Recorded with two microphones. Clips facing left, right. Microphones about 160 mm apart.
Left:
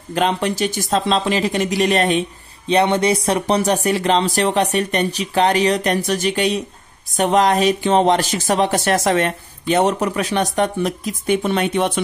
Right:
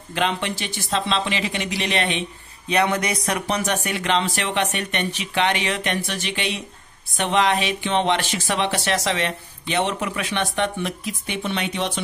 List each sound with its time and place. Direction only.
0.1 s speech: 40° left (ahead or behind)
2.7 s speech: 30° left (ahead or behind); by 12.0 s 50° left (ahead or behind)